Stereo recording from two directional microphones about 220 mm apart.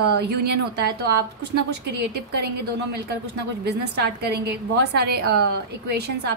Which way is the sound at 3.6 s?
50° right (ahead or behind).